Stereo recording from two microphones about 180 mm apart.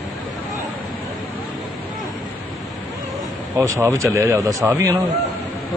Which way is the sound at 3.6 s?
15° right (ahead or behind).